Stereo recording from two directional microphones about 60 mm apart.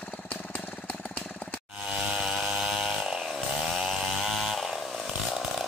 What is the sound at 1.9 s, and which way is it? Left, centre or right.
Chainsaw, centre.